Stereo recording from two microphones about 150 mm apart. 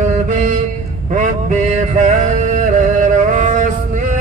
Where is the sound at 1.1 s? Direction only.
55° right (ahead or behind).